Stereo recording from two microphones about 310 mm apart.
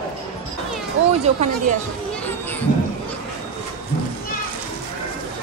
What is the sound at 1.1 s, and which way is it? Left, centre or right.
Speech, right.